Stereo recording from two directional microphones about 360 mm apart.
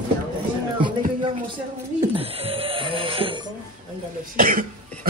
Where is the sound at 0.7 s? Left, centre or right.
Centre.